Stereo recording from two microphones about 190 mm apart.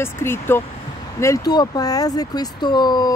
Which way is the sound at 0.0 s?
15° left (ahead or behind).